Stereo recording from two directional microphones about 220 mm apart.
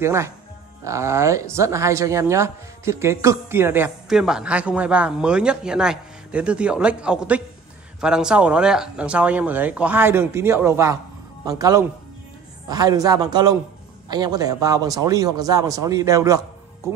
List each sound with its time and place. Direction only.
0.0 s speech: 10° right (ahead or behind)